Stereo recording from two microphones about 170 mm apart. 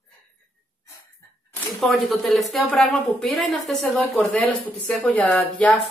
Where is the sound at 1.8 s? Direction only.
Centre (ahead or behind).